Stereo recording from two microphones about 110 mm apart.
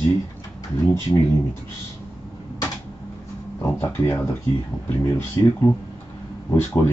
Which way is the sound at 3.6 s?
20° left (ahead or behind).